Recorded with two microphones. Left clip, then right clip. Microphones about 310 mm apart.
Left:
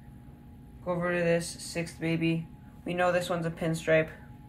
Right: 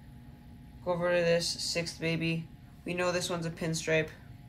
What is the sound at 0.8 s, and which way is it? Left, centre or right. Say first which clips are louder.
Speech: right 1 dB; centre.